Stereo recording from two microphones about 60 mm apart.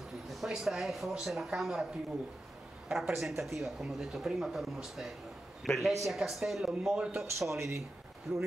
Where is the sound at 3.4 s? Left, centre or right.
Centre.